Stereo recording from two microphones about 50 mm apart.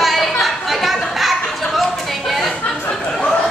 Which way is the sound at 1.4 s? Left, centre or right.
Centre.